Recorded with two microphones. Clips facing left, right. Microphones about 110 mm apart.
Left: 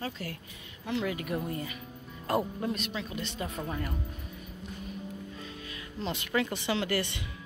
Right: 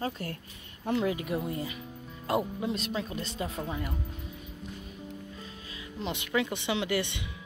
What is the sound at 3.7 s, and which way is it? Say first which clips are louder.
Speech: even; 15° right (ahead or behind).